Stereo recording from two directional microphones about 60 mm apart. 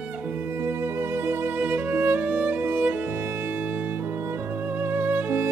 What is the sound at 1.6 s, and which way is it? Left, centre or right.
Music, right.